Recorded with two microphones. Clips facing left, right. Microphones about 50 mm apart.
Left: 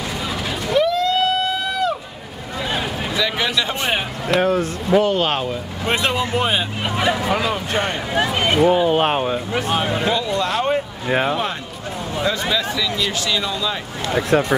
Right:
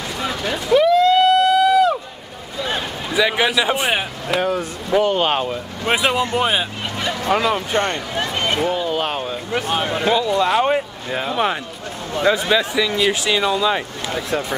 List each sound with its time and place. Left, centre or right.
0.2 s vehicle: centre
3.2 s speech: centre
4.6 s speech: centre
7.0 s speech: centre
9.5 s speech: centre
11.1 s speech: left
12.3 s speech: right
14.3 s speech: left